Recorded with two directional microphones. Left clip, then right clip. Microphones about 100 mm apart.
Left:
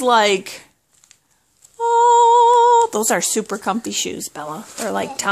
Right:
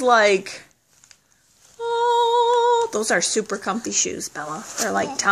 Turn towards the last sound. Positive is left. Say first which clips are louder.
# even
turn(degrees=45)  # may be behind; listen again after turning